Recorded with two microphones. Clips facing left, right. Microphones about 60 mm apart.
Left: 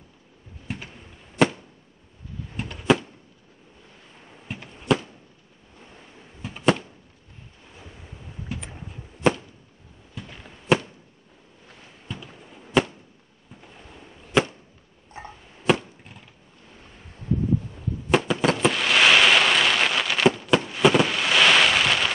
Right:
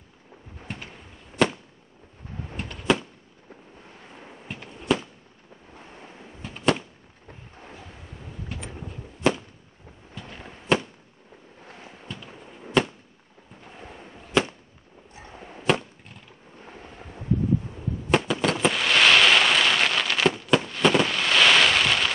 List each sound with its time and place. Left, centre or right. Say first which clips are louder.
0.7 s bird: left 3 dB; centre
2.5 s a sound: left 3 dB; centre
4.5 s fireworks: left 1 dB; centre
6.4 s fireworks: left 2 dB; centre
8.5 s fireworks: left 1 dB; centre
10.7 s fireworks: left 2 dB; centre
12.1 s fireworks: left 3 dB; centre
15.3 s chop: right 8 dB; right
15.6 s chop: left 2 dB; centre
18.1 s fireworks: left 2 dB; centre